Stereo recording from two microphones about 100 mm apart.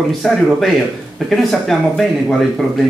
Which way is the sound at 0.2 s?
5° left (ahead or behind).